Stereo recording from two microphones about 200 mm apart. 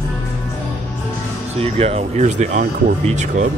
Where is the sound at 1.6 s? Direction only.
30° right (ahead or behind).